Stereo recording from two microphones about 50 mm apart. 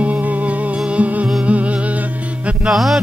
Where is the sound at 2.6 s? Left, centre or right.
Centre.